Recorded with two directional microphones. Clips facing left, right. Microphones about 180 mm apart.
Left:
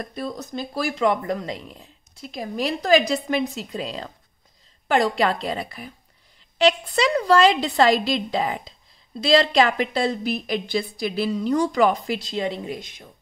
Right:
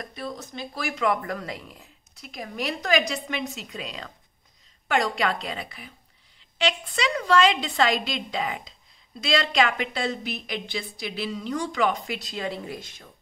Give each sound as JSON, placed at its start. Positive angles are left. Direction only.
{"t": 0.0, "sound": "speech", "side_deg": 40}